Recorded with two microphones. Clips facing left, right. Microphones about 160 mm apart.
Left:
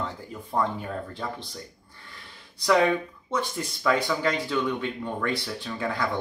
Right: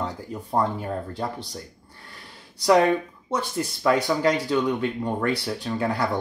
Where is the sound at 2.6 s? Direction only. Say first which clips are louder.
Right 3 dB; 35° right (ahead or behind).